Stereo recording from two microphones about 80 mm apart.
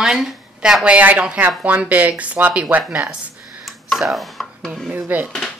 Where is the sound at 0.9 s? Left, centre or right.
Centre.